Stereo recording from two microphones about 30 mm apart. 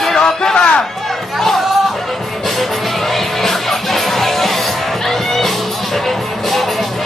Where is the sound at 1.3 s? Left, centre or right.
Centre.